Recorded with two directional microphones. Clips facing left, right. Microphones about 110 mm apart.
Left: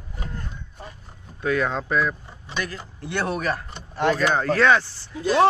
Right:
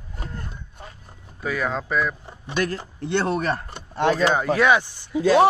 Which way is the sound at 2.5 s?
50° right (ahead or behind).